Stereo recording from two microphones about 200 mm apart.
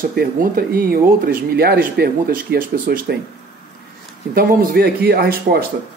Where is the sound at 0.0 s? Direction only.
45° right (ahead or behind).